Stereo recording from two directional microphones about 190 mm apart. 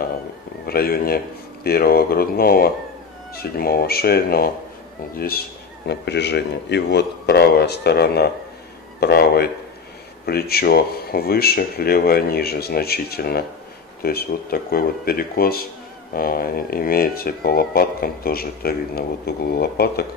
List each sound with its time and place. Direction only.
0.7 s a man's voice: 55° left (ahead or behind)